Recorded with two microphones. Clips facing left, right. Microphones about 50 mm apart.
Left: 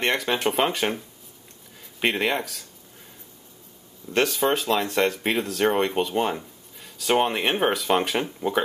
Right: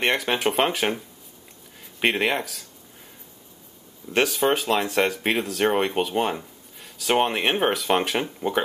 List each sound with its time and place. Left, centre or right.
0.0 s speech: centre
4.1 s speech: centre